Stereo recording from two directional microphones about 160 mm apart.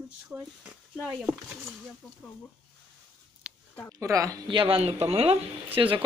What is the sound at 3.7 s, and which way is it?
Speech, 15° left (ahead or behind).